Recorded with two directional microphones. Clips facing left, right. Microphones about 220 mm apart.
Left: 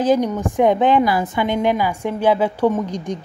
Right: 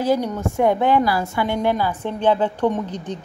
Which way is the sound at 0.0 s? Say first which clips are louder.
Left 3 dB; 15° left (ahead or behind).